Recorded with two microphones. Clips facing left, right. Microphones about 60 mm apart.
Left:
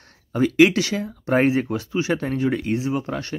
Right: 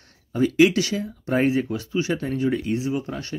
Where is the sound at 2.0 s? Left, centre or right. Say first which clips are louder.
Left 1 dB; left.